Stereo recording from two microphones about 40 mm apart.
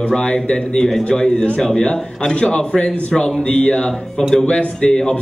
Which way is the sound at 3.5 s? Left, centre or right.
Left.